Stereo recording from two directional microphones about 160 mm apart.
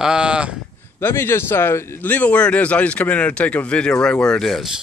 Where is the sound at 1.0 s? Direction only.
15° left (ahead or behind).